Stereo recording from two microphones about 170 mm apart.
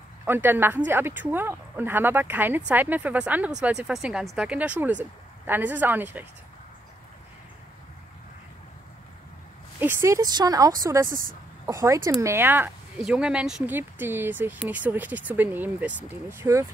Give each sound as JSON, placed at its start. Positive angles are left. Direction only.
{"t": 0.2, "sound": "speech", "side_deg": -10}
{"t": 9.8, "sound": "speech", "side_deg": -15}
{"t": 11.1, "sound": "speech", "side_deg": -55}
{"t": 11.7, "sound": "speech", "side_deg": -20}